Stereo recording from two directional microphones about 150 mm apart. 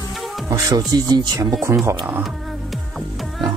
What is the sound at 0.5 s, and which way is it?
Speech, 25° right (ahead or behind).